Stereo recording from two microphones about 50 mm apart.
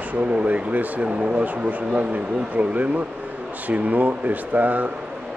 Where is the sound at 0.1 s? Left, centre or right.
Right.